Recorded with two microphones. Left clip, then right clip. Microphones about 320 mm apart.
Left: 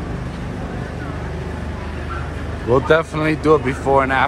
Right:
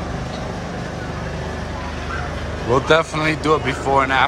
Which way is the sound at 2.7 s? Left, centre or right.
Centre.